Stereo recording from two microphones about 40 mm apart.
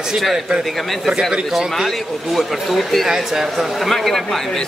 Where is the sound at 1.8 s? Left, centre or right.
Centre.